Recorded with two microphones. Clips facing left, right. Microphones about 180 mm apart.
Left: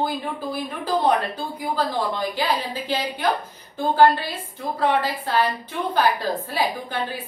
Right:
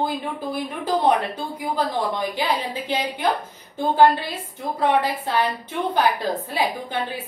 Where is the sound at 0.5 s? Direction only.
25° right (ahead or behind).